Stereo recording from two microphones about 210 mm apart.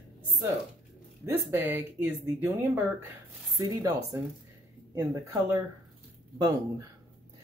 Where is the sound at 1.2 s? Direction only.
10° right (ahead or behind).